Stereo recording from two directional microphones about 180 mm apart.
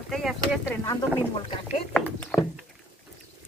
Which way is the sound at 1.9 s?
5° left (ahead or behind).